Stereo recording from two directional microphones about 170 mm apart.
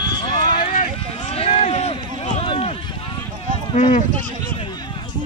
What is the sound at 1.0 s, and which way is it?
Run, 35° left (ahead or behind).